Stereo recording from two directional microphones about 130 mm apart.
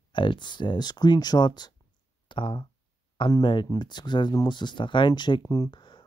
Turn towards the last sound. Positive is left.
turn(degrees=35)  # may be behind; listen again after turning